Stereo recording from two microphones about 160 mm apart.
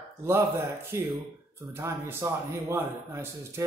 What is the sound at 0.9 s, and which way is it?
A man's voice, 15° right (ahead or behind).